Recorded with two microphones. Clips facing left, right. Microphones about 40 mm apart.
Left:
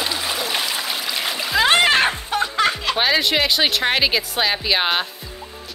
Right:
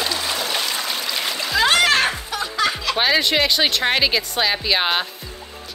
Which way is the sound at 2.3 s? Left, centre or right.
Left.